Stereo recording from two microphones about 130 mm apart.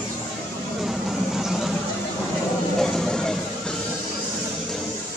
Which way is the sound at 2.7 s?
5° left (ahead or behind).